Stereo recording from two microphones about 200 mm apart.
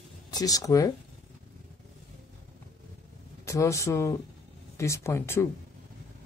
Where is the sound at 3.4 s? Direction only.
15° left (ahead or behind).